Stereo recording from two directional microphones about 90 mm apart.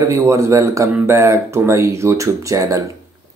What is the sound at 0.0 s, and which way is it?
Speech, 35° right (ahead or behind).